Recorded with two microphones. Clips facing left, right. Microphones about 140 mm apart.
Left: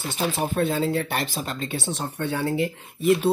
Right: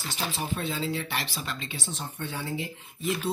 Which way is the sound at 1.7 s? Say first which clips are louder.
Left 8 dB; 65° left (ahead or behind).